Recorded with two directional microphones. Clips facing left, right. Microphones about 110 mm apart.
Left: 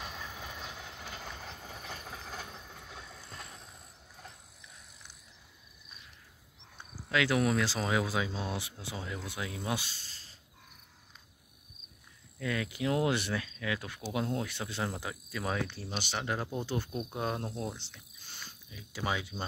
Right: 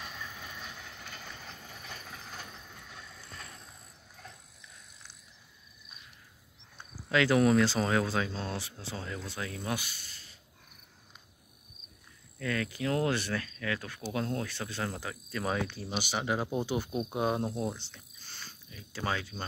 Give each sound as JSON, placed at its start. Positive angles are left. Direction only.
{"t": 0.0, "sound": "train", "side_deg": 20}
{"t": 1.9, "sound": "vehicle", "side_deg": 35}
{"t": 7.1, "sound": "speech", "side_deg": 0}
{"t": 12.4, "sound": "speech", "side_deg": 15}
{"t": 15.3, "sound": "speech", "side_deg": 0}